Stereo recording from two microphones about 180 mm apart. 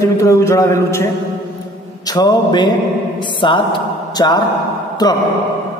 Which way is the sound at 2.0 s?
20° left (ahead or behind).